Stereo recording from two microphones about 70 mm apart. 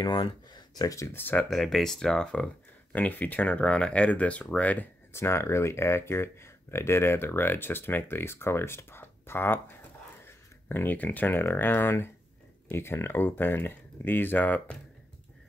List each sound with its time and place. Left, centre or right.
0.6 s a sound: left
1.1 s speech: left
1.5 s speech: centre; by 4.8 s left
5.1 s speech: left